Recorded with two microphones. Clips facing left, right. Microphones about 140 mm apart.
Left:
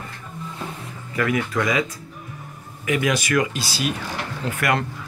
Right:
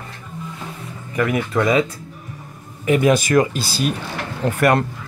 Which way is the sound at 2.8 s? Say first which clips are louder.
Right 6 dB; 40° right (ahead or behind).